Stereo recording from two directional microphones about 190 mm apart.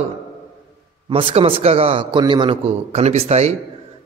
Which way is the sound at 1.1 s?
30° right (ahead or behind).